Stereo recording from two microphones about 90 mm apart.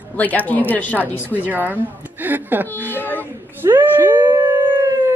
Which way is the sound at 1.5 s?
20° right (ahead or behind).